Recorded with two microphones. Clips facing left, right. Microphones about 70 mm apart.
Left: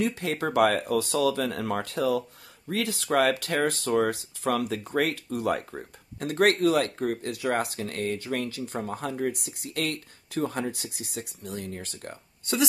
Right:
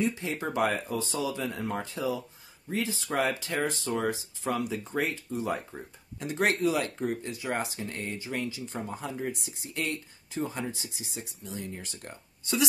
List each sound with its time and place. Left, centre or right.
0.0 s speech: left
5.7 s speech: left